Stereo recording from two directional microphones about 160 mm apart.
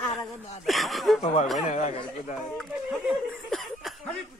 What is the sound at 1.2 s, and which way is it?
Speech, 45° left (ahead or behind).